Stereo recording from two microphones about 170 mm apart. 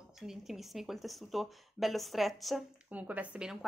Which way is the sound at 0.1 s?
Centre (ahead or behind).